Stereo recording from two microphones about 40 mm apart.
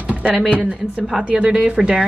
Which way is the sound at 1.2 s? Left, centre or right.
Right.